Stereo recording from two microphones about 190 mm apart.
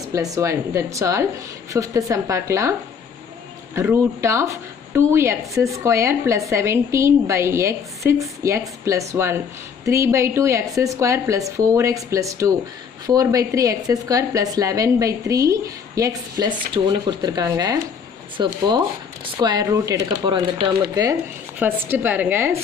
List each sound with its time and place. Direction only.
0.1 s speech: 15° right (ahead or behind)
3.7 s speech: 15° right (ahead or behind)